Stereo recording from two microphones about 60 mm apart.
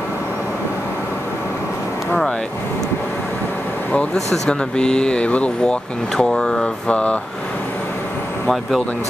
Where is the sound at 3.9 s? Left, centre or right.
Centre.